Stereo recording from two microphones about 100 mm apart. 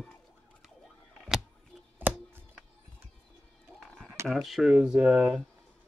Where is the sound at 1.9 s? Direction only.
20° right (ahead or behind).